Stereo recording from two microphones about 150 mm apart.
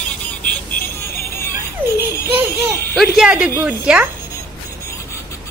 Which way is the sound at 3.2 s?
5° right (ahead or behind).